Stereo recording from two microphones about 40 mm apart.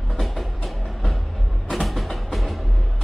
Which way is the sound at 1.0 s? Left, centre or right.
Centre.